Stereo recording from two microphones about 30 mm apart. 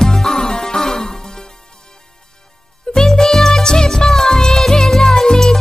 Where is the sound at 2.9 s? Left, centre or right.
Left.